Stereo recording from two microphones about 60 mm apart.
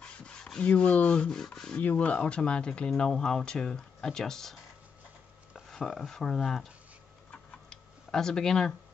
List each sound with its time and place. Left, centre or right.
0.0 s rub: centre
1.4 s speech: centre
1.8 s speech: left; by 4.6 s centre
5.7 s speech: centre
7.2 s tick-tock: centre